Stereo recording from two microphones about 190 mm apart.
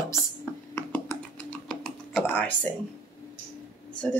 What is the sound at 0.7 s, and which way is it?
Computer keyboard, 10° left (ahead or behind).